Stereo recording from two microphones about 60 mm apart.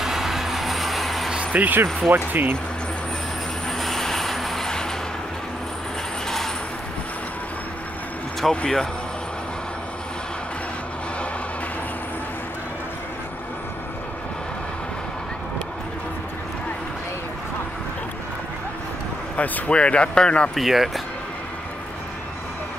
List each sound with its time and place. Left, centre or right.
0.0 s vehicle: centre
1.3 s a sound: right
2.1 s speech: right
3.6 s train: centre
6.2 s a sound: centre
8.4 s speech: centre
19.3 s speech: left
20.5 s speech: centre